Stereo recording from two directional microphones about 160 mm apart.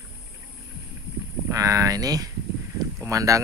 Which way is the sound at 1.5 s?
20° right (ahead or behind).